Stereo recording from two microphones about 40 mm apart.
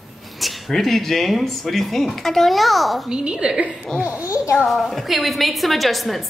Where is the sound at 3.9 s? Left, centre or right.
Right.